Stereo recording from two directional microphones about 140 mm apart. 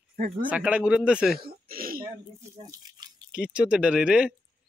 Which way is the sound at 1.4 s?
90° right.